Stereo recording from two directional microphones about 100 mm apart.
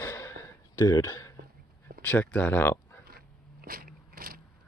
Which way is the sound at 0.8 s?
35° left (ahead or behind).